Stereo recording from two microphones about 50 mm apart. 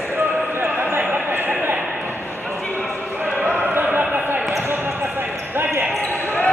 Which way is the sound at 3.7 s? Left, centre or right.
Right.